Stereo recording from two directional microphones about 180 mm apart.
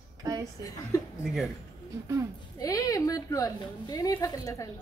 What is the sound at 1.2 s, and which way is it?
Speech, centre (ahead or behind).